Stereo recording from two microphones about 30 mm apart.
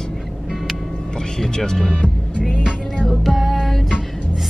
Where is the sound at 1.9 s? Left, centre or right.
Left.